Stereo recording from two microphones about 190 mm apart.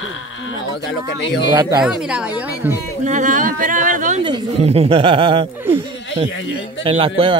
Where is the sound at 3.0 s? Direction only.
40° right (ahead or behind).